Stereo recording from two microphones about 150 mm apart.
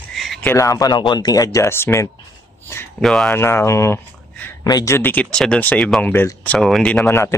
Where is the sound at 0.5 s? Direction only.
20° left (ahead or behind).